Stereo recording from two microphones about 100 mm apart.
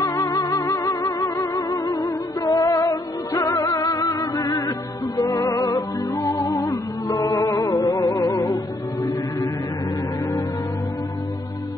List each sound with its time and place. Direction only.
0.0 s music: 30° left (ahead or behind)